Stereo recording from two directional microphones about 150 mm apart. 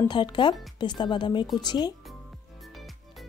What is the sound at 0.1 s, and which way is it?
Speech, 30° left (ahead or behind).